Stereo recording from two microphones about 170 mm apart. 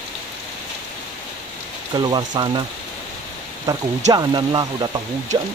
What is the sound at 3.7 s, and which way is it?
Speech, 20° right (ahead or behind).